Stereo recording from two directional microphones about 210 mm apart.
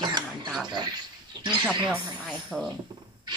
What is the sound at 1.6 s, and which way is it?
A woman's voice, 5° right (ahead or behind).